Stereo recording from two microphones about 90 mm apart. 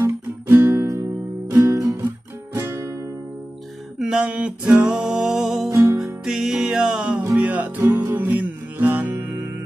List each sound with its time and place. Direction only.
0.0 s music: 25° right (ahead or behind)
4.0 s music: 10° right (ahead or behind)